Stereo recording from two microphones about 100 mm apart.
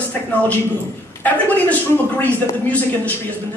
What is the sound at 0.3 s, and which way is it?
A man's voice, 15° left (ahead or behind).